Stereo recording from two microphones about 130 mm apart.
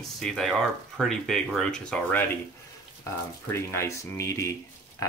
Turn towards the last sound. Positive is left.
turn(degrees=25)  # may be behind; listen again after turning